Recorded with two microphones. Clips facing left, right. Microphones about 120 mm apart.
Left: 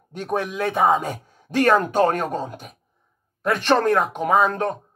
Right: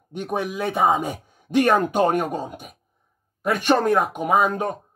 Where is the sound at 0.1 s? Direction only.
10° right (ahead or behind).